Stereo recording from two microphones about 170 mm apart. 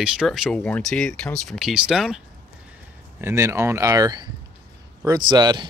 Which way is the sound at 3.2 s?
15° right (ahead or behind).